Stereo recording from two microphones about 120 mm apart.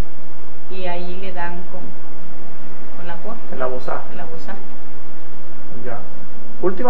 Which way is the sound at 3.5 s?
25° left (ahead or behind).